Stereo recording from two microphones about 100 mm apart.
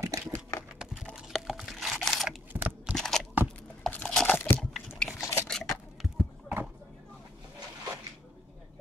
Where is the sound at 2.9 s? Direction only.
5° left (ahead or behind).